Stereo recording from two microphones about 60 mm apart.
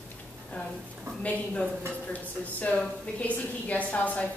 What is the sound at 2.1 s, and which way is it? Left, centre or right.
A woman's voice, left.